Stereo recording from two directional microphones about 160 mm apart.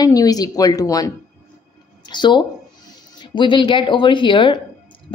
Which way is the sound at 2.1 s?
30° left (ahead or behind).